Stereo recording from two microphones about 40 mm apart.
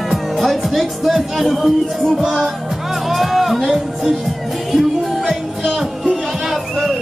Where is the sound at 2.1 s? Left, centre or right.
Centre.